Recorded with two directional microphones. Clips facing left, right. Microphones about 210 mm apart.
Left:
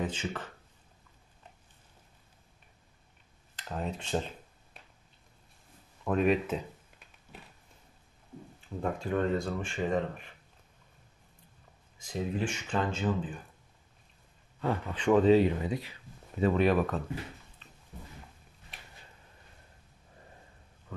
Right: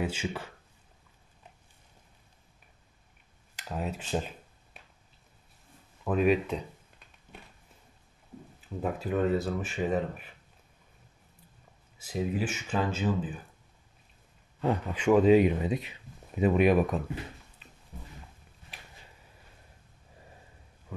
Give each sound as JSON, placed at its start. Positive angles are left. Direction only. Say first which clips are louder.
{"t": 0.0, "sound": "speech", "louder": "right 2 dB", "side_deg": -10}
{"t": 3.5, "sound": "speech", "louder": "right 1 dB", "side_deg": -5}
{"t": 6.0, "sound": "speech", "louder": "right 1 dB", "side_deg": 0}
{"t": 8.5, "sound": "speech", "louder": "right 1 dB", "side_deg": -5}
{"t": 12.0, "sound": "speech", "louder": "right 2 dB", "side_deg": -5}
{"t": 14.6, "sound": "speech", "louder": "right 3 dB", "side_deg": -15}